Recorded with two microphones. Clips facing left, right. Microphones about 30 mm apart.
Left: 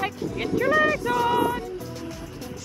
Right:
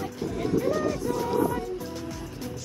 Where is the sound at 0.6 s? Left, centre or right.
Left.